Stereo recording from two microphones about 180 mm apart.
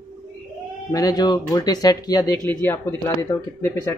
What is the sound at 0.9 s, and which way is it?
Speech, 20° left (ahead or behind).